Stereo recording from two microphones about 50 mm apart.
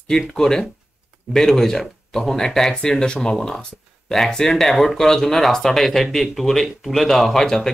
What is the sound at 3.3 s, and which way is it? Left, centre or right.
Speech, centre.